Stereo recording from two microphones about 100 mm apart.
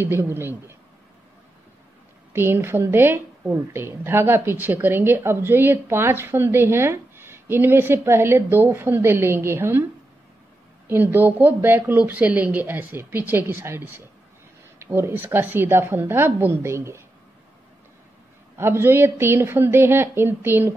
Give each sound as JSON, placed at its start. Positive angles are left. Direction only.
{"t": 0.0, "sound": "a woman's voice", "side_deg": -20}
{"t": 2.3, "sound": "a woman's voice", "side_deg": -25}
{"t": 10.9, "sound": "a woman's voice", "side_deg": -20}
{"t": 18.6, "sound": "a woman's voice", "side_deg": -25}